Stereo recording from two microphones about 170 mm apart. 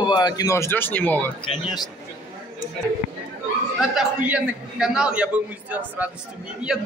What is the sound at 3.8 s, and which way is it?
A man's voice, 5° right (ahead or behind).